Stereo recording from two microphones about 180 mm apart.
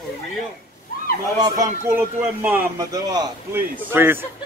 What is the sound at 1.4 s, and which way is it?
Speech, 15° right (ahead or behind).